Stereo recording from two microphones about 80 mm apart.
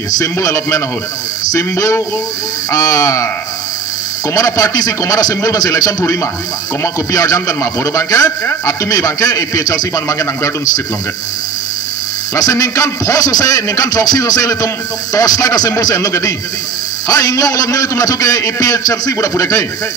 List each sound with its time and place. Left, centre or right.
0.2 s a man's voice: left
4.3 s a man's voice: left
12.4 s a man's voice: left